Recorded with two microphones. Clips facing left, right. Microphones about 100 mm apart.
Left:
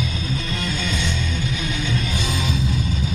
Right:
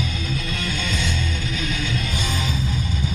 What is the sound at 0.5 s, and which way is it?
Music, 20° left (ahead or behind).